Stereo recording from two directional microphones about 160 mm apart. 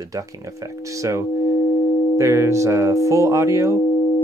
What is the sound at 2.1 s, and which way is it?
Speech, 20° right (ahead or behind).